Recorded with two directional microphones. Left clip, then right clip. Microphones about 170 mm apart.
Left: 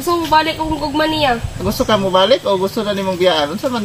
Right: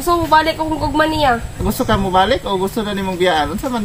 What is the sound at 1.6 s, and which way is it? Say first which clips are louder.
Speech: left 4 dB; 30° right (ahead or behind).